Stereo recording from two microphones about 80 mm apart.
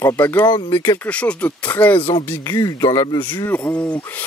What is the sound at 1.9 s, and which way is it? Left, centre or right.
Speech, left.